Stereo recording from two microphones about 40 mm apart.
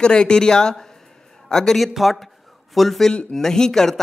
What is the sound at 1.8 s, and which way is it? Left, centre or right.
Speech, centre.